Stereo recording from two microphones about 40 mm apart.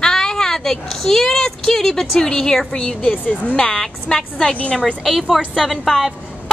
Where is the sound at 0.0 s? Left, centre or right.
Centre.